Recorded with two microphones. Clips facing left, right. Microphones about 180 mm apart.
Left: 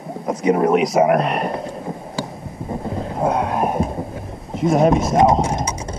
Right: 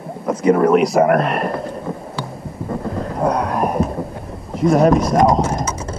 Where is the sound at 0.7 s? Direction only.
Centre (ahead or behind).